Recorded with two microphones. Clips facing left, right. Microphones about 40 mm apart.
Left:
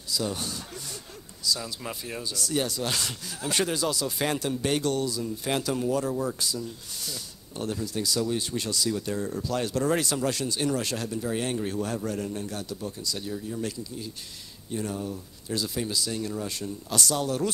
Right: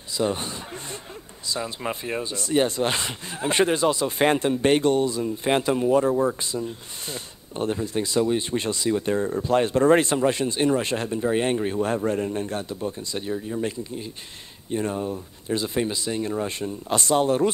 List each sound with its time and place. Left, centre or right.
0.1 s speech: right